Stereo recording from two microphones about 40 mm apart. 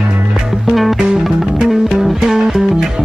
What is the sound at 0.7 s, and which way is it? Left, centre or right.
Music, centre.